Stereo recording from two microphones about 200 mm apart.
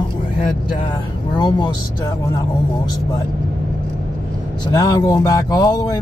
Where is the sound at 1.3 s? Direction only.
20° left (ahead or behind).